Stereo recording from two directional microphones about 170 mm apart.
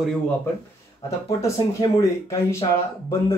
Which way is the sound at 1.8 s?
20° left (ahead or behind).